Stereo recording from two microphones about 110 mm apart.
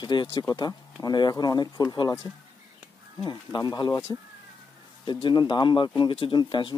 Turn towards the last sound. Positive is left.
turn(degrees=45)  # may be behind; listen again after turning